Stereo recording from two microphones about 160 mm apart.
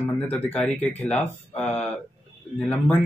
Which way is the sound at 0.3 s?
10° left (ahead or behind).